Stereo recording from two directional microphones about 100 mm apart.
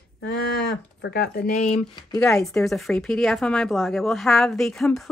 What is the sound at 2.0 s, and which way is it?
Speech, 40° left (ahead or behind).